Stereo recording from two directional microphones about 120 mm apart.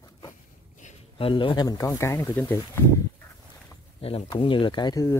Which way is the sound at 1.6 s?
25° left (ahead or behind).